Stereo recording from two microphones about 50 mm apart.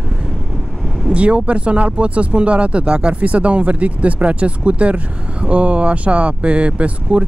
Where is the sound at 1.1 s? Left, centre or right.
Right.